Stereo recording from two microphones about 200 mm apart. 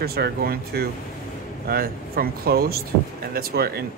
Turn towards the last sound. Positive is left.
turn(degrees=-50)  # may be behind; listen again after turning